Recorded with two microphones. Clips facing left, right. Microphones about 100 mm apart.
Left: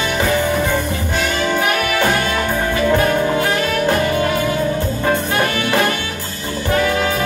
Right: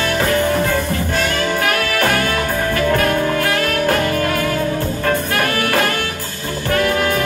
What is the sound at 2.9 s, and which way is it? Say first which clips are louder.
Music: left 2 dB; 20° left (ahead or behind).